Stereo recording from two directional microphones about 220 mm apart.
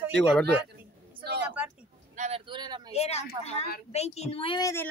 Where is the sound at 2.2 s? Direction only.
25° right (ahead or behind).